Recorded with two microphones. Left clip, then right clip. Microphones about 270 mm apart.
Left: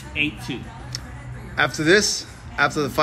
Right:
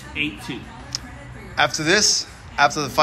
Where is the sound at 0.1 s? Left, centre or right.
Centre.